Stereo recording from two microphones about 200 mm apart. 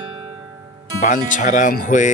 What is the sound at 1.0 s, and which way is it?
Speech, 40° left (ahead or behind).